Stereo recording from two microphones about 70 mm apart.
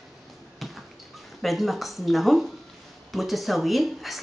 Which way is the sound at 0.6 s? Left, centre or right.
Centre.